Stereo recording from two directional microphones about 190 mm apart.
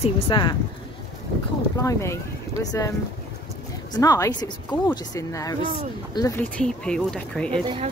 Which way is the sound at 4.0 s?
20° left (ahead or behind).